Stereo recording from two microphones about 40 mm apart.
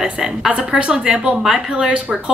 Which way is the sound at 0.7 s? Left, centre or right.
Right.